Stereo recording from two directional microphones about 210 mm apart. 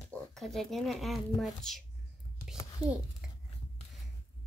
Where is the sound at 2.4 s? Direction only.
5° right (ahead or behind).